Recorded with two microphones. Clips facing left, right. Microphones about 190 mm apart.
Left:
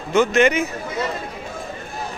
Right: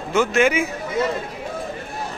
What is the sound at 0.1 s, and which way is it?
Speech, 5° right (ahead or behind).